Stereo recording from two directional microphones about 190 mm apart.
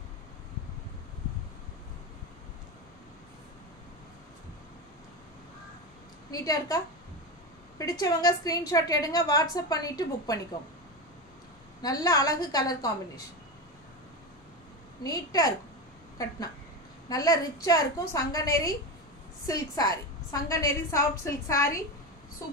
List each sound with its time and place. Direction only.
6.3 s a woman's voice: 20° left (ahead or behind)
7.8 s a woman's voice: 20° left (ahead or behind)
11.8 s a woman's voice: 20° left (ahead or behind)
15.0 s a woman's voice: 20° left (ahead or behind)
17.1 s a woman's voice: 20° left (ahead or behind)